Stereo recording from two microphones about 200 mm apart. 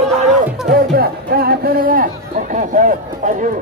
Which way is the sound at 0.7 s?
50° right (ahead or behind).